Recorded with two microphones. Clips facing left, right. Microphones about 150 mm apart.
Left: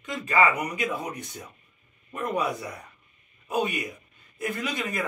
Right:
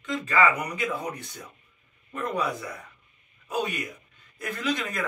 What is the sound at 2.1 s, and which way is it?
Speech, 15° left (ahead or behind).